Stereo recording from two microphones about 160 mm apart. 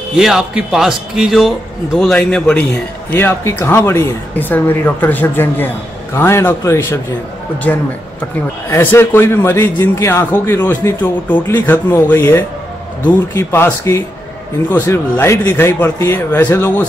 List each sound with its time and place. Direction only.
0.1 s a man's voice: 5° right (ahead or behind); by 16.8 s 15° left (ahead or behind)